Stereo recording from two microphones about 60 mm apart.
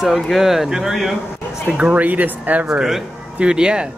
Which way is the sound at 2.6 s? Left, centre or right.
Centre.